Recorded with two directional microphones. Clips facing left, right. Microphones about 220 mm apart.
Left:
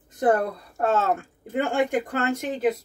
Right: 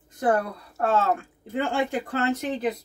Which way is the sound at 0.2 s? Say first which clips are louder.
Left 2 dB; 20° left (ahead or behind).